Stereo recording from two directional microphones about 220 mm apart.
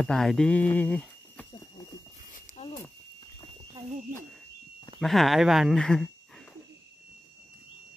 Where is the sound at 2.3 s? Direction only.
30° left (ahead or behind).